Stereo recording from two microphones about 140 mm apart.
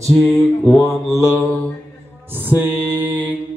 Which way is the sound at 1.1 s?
25° right (ahead or behind).